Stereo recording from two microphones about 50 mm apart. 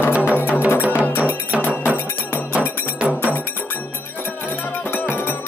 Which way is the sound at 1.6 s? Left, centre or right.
Left.